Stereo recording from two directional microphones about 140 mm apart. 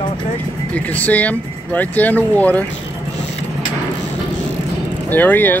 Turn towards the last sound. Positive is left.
turn(degrees=15)  # may be behind; listen again after turning